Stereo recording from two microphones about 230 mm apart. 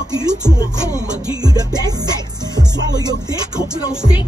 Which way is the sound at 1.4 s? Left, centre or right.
Centre.